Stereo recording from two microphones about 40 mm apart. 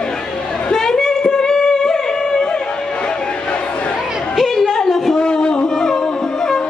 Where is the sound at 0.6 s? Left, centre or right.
Centre.